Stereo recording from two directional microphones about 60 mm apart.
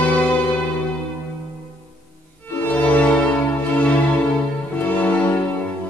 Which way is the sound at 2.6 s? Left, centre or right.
Left.